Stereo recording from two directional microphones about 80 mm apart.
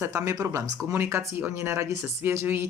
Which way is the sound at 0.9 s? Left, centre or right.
Right.